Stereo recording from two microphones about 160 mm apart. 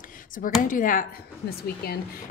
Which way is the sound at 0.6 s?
55° left (ahead or behind).